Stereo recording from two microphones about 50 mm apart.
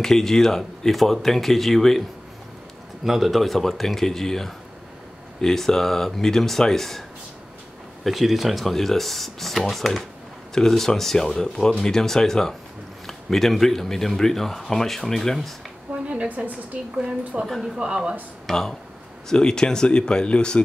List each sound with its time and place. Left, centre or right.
0.0 s speech: centre
3.0 s speech: centre
8.0 s speech: centre
16.1 s a woman's voice: right
17.5 s speech: centre
17.7 s a woman's voice: centre
18.5 s speech: centre